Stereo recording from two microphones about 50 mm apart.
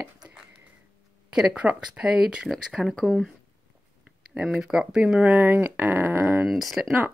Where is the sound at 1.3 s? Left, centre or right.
Centre.